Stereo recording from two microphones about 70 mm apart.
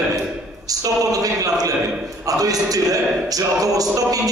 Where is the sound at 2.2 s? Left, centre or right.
Right.